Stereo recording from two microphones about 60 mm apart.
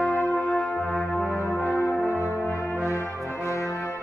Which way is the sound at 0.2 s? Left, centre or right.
Left.